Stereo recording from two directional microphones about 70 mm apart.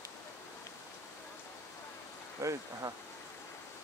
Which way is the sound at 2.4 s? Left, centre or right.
Right.